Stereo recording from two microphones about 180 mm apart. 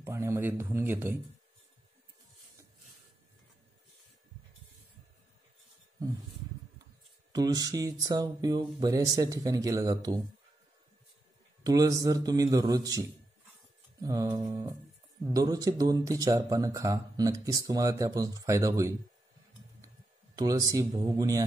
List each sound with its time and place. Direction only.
0.0 s speech: 15° right (ahead or behind)
7.3 s speech: 20° right (ahead or behind)
11.6 s speech: 20° right (ahead or behind)
14.0 s speech: 15° right (ahead or behind)
20.3 s speech: 20° right (ahead or behind)